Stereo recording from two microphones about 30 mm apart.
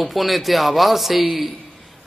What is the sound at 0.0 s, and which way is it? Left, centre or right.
Speech, centre.